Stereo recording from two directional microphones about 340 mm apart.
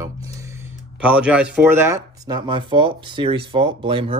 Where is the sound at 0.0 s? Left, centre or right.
Centre.